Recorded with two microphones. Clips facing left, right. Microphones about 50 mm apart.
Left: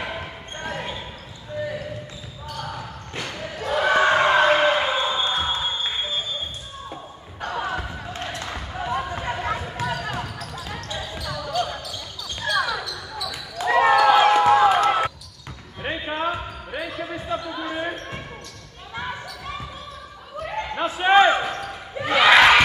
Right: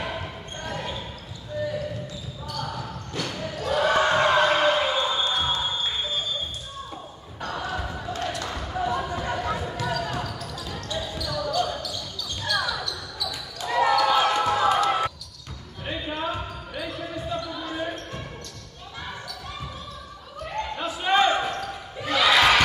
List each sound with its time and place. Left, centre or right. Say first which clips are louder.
0.0 s basketball bounce: left 1 dB; centre
7.4 s a sound: left 3 dB; left
8.0 s basketball bounce: right 2 dB; left
9.1 s a sound: left 1 dB; left
9.8 s basketball bounce: left 1 dB; left
13.7 s a sound: left 5 dB; left
16.8 s basketball bounce: left 1 dB; left
18.9 s basketball bounce: left 5 dB; left
20.7 s basketball bounce: left 7 dB; left
21.3 s basketball bounce: left 3 dB; centre
21.6 s basketball bounce: left 4 dB; left